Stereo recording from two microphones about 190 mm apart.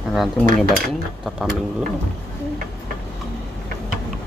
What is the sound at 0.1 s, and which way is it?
Mechanisms, centre (ahead or behind).